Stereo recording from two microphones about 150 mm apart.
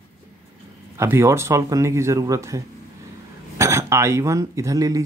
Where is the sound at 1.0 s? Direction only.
20° right (ahead or behind).